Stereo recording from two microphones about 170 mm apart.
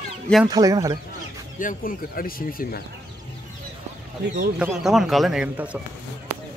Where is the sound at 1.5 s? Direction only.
55° left (ahead or behind).